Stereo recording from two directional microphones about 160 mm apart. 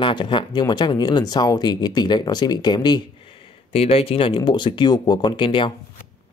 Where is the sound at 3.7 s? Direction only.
40° left (ahead or behind).